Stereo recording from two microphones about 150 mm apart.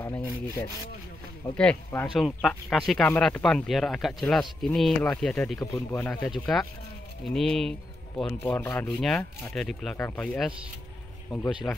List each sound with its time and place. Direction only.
0.0 s rub: 15° left (ahead or behind)
1.6 s speech: 10° left (ahead or behind)
5.6 s speech: 20° left (ahead or behind)
6.2 s speech: 5° left (ahead or behind)
8.8 s speech: centre (ahead or behind)